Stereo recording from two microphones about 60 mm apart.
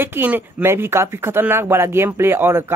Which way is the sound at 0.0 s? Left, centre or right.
Right.